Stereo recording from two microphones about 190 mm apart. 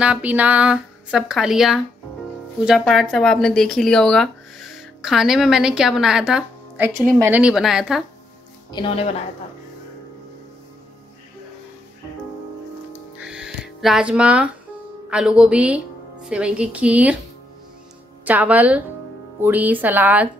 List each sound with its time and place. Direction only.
0.0 s speech: 5° right (ahead or behind)
8.7 s a woman's voice: 25° left (ahead or behind)
13.2 s music: 5° right (ahead or behind)
15.0 s speech: 5° right (ahead or behind)
18.2 s a woman's voice: 10° right (ahead or behind)